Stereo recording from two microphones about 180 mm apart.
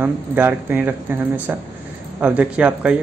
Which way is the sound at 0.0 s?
10° right (ahead or behind).